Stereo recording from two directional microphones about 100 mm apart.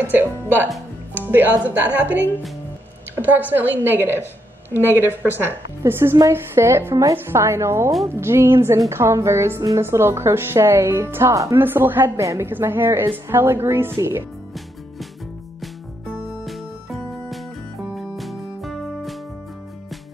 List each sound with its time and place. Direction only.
0.0 s a woman's voice: 20° right (ahead or behind)
16.4 s music: centre (ahead or behind)